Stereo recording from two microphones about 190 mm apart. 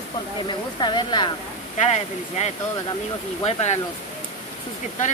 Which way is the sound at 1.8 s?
35° left (ahead or behind).